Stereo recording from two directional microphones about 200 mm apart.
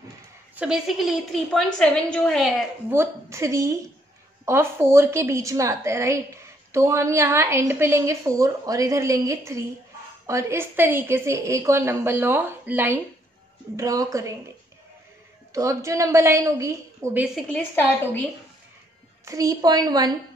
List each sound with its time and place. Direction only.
0.6 s a woman's voice: 5° right (ahead or behind)
2.9 s a woman's voice: 15° right (ahead or behind)
15.5 s a woman's voice: 15° right (ahead or behind)
17.5 s a woman's voice: 10° left (ahead or behind)
19.2 s a woman's voice: 15° right (ahead or behind)